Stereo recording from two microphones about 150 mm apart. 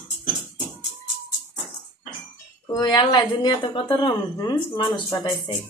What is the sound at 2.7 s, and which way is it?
A woman's voice, 25° left (ahead or behind).